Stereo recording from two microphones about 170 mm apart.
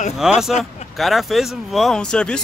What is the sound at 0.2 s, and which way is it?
Speech, 5° right (ahead or behind).